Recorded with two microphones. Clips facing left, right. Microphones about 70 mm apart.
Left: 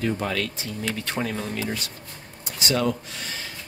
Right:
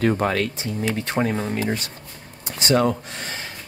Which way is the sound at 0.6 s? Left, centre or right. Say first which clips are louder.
Right 5 dB; right.